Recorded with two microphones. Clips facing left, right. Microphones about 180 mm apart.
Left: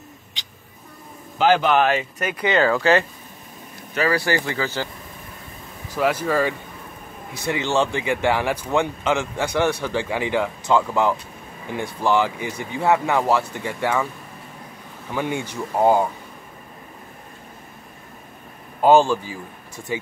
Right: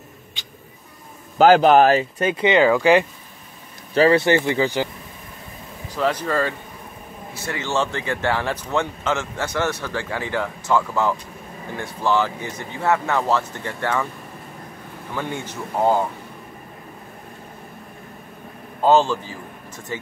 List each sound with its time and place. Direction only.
1.4 s speech: 40° right (ahead or behind); by 3.1 s 15° right (ahead or behind)
3.9 s speech: 25° right (ahead or behind)
5.9 s speech: 10° left (ahead or behind)
15.1 s speech: 15° left (ahead or behind)
18.8 s speech: 15° left (ahead or behind)